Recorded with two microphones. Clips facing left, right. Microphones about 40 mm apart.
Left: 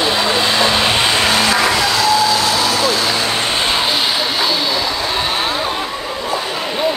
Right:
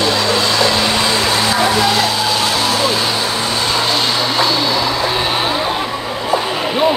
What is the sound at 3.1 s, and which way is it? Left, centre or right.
Vehicle, left.